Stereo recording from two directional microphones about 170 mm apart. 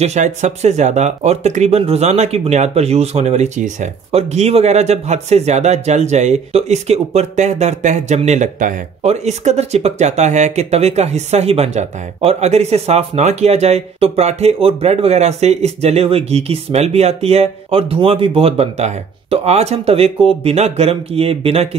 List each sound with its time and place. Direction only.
0.0 s speech: 40° right (ahead or behind)